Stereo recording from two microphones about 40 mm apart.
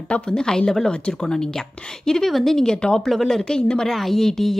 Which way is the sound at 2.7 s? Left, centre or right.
Left.